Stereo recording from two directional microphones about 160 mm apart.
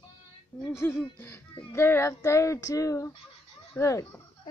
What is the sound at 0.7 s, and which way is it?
Speech, 15° left (ahead or behind).